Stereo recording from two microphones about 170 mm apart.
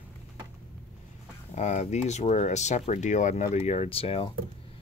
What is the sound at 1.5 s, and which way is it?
Speech, 40° left (ahead or behind).